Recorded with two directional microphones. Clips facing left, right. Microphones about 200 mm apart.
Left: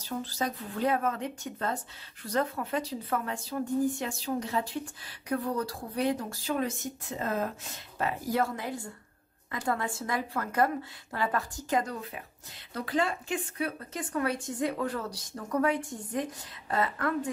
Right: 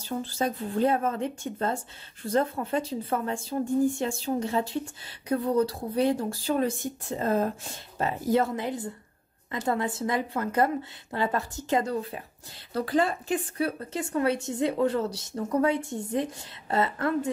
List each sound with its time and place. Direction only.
0.0 s a woman's voice: 25° right (ahead or behind)